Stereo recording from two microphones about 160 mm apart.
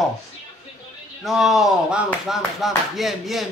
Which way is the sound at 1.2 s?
Centre (ahead or behind).